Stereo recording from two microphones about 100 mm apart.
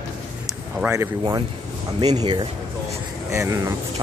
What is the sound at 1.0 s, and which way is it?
Speech, 40° right (ahead or behind).